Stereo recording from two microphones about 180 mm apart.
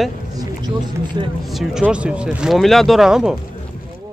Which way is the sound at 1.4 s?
Centre (ahead or behind).